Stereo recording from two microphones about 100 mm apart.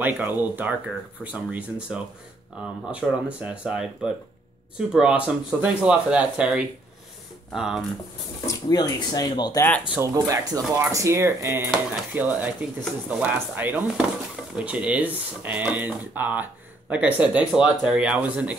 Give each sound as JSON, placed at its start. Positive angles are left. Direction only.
{"t": 0.0, "sound": "speech", "side_deg": -20}
{"t": 8.5, "sound": "speech", "side_deg": 35}
{"t": 9.9, "sound": "speech", "side_deg": -30}